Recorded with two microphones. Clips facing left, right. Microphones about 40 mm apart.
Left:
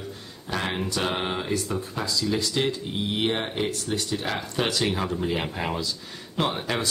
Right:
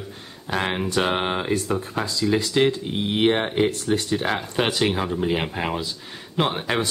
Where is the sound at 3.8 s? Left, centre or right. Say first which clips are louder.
Right 6 dB; right.